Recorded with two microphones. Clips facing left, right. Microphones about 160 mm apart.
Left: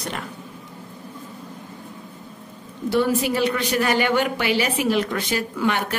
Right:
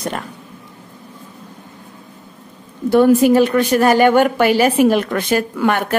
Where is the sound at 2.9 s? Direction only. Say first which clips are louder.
Right 10 dB; 50° right (ahead or behind).